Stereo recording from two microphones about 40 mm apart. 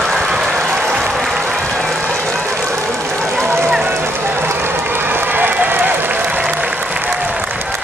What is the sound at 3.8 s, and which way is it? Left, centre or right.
Run, right.